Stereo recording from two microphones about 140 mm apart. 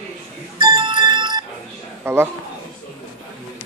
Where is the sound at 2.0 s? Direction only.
15° right (ahead or behind).